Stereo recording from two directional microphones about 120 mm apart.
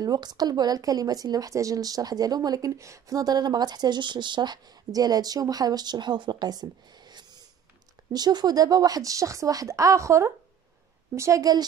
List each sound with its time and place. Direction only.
0.0 s a woman's voice: 35° right (ahead or behind)